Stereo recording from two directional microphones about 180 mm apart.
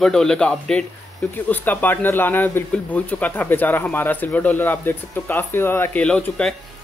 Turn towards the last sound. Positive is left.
turn(degrees=5)  # may be behind; listen again after turning